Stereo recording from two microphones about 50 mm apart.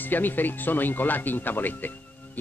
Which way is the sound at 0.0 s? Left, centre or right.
Left.